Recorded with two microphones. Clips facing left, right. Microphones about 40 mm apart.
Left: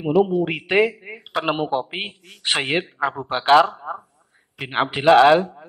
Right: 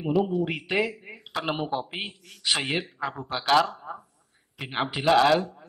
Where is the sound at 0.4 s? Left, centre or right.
Left.